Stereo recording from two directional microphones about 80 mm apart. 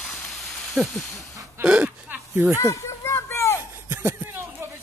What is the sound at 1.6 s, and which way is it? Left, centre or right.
Speech, centre.